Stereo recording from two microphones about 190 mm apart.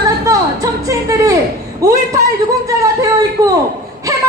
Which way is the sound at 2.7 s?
15° right (ahead or behind).